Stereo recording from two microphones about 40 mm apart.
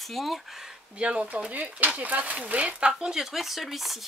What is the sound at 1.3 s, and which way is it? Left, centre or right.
Speech, right.